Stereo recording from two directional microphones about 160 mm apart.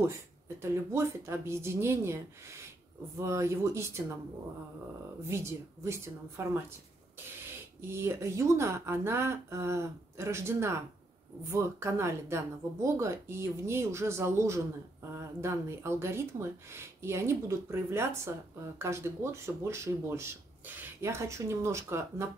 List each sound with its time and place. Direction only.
0.6 s speech: 15° right (ahead or behind)
3.2 s speech: 15° right (ahead or behind)
5.2 s speech: 15° right (ahead or behind)
7.8 s speech: 15° right (ahead or behind)